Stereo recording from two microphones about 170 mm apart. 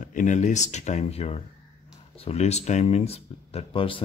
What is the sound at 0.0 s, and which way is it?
Speech, 50° left (ahead or behind).